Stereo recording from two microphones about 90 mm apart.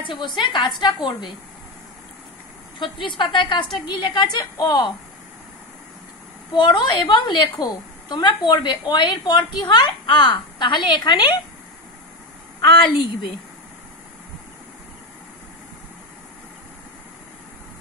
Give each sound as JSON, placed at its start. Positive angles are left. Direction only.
{"t": 0.0, "sound": "a woman's voice", "side_deg": 65}
{"t": 2.8, "sound": "a woman's voice", "side_deg": 65}
{"t": 3.8, "sound": "a woman's voice", "side_deg": 55}
{"t": 6.5, "sound": "a woman's voice", "side_deg": 55}
{"t": 12.9, "sound": "a woman's voice", "side_deg": 65}